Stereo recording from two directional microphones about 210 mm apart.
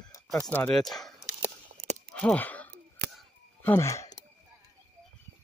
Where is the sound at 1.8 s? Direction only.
30° right (ahead or behind).